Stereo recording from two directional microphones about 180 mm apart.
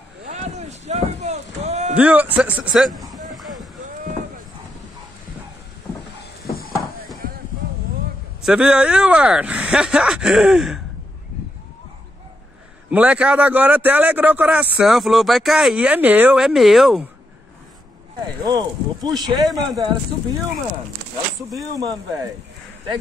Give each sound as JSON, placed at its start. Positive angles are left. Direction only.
{"t": 0.3, "sound": "boat", "side_deg": -40}
{"t": 2.0, "sound": "speech", "side_deg": -10}
{"t": 3.3, "sound": "a sound", "side_deg": 0}
{"t": 6.4, "sound": "a sound", "side_deg": 55}
{"t": 8.5, "sound": "speech", "side_deg": -5}
{"t": 12.9, "sound": "speech", "side_deg": -5}
{"t": 18.4, "sound": "speech", "side_deg": -20}
{"t": 21.7, "sound": "speech", "side_deg": -20}